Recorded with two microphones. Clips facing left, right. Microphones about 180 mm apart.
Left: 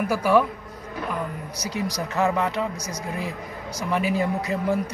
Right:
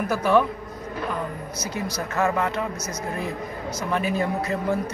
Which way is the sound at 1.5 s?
15° left (ahead or behind).